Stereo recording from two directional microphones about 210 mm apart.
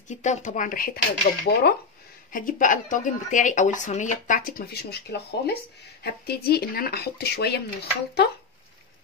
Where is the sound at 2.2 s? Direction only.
40° left (ahead or behind).